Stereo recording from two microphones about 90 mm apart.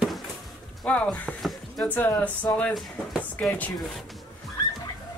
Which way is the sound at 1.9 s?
20° left (ahead or behind).